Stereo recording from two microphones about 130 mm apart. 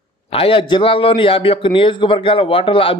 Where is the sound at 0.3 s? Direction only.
45° left (ahead or behind).